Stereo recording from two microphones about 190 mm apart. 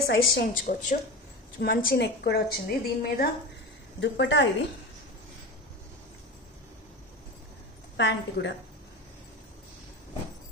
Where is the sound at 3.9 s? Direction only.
65° left (ahead or behind).